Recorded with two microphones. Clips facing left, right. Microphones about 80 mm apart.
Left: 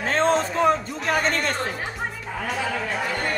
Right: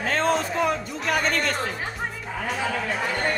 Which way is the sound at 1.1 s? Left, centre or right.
Left.